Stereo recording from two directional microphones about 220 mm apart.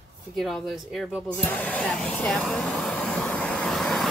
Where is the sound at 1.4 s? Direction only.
5° left (ahead or behind).